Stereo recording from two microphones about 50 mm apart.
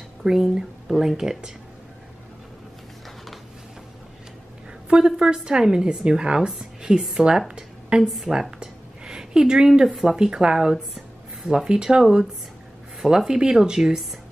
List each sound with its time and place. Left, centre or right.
0.2 s speech: centre
0.6 s speech: centre
4.8 s speech: centre
8.1 s a sound: centre
10.1 s speech: centre